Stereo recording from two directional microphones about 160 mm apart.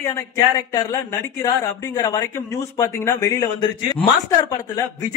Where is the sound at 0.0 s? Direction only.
20° left (ahead or behind).